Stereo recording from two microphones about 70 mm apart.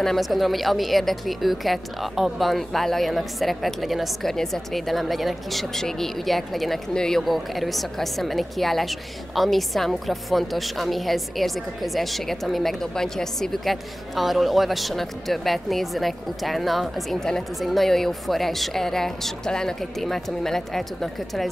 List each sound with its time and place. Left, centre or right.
0.0 s speech: centre